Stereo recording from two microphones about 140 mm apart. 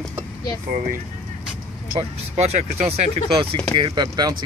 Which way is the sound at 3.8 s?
35° right (ahead or behind).